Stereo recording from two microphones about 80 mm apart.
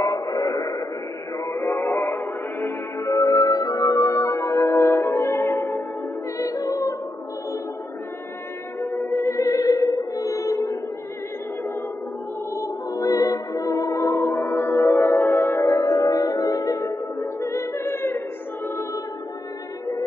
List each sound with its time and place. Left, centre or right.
0.0 s chant: left
1.4 s music: left
6.3 s music: left
8.8 s music: left
12.5 s music: left